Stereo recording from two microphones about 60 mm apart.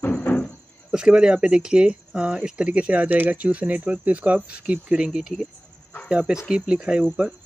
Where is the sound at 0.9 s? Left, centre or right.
Centre.